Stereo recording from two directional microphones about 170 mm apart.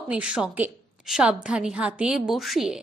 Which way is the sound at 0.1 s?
5° right (ahead or behind).